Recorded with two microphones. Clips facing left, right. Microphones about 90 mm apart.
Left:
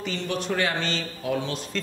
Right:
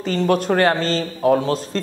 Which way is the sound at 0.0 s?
40° right (ahead or behind).